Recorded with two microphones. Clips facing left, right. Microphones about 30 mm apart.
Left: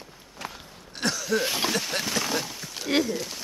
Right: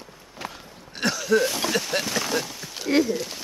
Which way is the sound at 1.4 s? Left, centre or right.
Centre.